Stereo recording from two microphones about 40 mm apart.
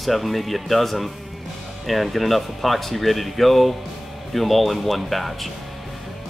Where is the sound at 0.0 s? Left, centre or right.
Centre.